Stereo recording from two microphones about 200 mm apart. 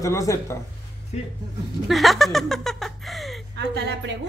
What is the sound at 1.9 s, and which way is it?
Speech, centre (ahead or behind).